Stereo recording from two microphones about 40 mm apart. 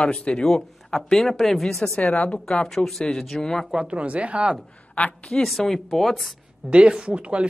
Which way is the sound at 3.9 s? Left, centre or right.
Right.